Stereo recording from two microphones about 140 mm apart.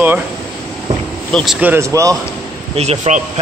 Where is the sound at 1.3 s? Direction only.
5° left (ahead or behind).